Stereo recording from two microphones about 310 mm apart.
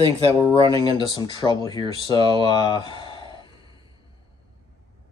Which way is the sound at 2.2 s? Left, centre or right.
Centre.